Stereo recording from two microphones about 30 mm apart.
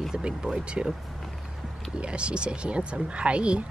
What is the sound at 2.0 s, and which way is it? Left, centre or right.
Speech, right.